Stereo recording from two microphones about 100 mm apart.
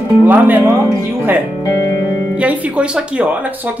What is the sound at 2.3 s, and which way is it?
Speech, 10° right (ahead or behind).